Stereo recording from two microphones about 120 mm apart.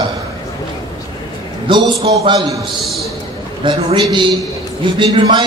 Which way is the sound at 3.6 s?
50° right (ahead or behind).